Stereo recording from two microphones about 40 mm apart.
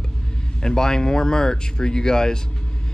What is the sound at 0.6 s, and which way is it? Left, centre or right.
Speech, centre.